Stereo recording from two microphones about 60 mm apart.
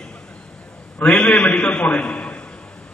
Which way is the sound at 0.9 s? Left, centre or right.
Centre.